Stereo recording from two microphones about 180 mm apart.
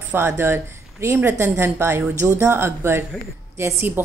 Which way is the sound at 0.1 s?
15° right (ahead or behind).